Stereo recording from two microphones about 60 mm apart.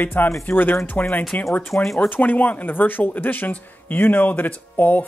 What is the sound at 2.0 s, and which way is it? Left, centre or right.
Speech, left.